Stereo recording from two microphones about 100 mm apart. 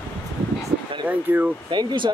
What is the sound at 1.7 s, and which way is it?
Speech, 50° right (ahead or behind).